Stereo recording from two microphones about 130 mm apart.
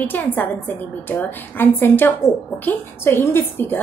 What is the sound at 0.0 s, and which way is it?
A woman's voice, 15° left (ahead or behind).